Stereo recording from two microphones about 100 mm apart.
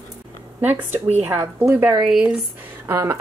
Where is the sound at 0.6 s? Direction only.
15° right (ahead or behind).